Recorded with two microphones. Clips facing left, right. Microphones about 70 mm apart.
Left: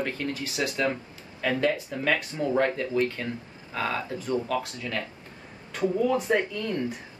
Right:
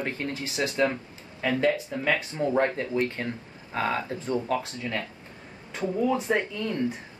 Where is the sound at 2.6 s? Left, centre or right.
Right.